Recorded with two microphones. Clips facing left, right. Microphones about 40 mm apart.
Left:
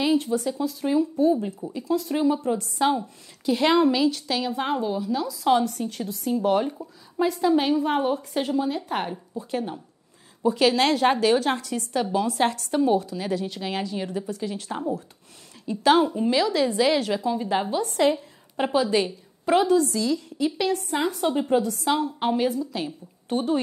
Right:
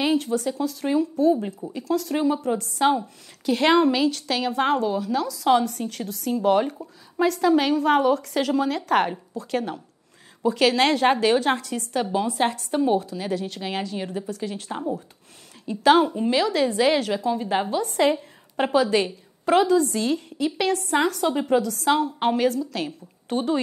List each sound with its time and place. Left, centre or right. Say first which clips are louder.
0.0 s a woman's voice: even; right
1.7 s a woman's voice: right 1 dB; right
2.5 s a woman's voice: right 2 dB; right
4.1 s a woman's voice: right 1 dB; right
4.7 s a woman's voice: right 2 dB; right
10.4 s a woman's voice: right 1 dB; right
13.6 s a woman's voice: even; right
14.7 s speech: even; centre
15.6 s a woman's voice: right 2 dB; right
21.5 s a woman's voice: right 2 dB; right
22.7 s a woman's voice: right 1 dB; right